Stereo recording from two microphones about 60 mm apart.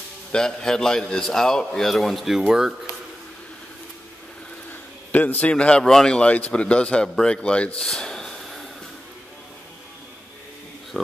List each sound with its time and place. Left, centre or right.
0.3 s a man's voice: centre
4.6 s a sound: left
5.9 s a man's voice: centre
6.1 s a man's voice: left
7.8 s snort: centre